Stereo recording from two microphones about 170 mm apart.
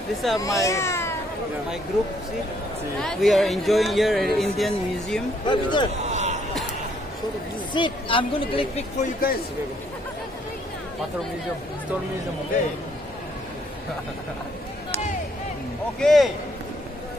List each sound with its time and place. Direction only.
0.1 s speech: centre (ahead or behind)
0.4 s speech: 20° left (ahead or behind)
3.0 s speech: centre (ahead or behind)
5.5 s a man's voice: 25° left (ahead or behind)
6.0 s a sound: 45° right (ahead or behind)
7.7 s a woman's voice: 30° left (ahead or behind)
9.0 s a man's voice: 60° left (ahead or behind)
16.0 s speech: centre (ahead or behind)